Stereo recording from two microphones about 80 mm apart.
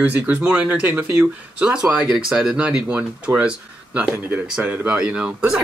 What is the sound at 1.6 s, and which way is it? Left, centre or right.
Speech, centre.